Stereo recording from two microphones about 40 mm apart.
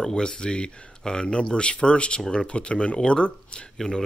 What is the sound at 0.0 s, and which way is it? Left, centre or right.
Speech, centre.